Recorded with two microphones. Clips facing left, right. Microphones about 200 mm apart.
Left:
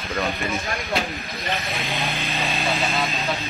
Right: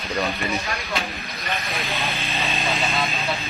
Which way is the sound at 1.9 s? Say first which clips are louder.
Left 1 dB; 15° left (ahead or behind).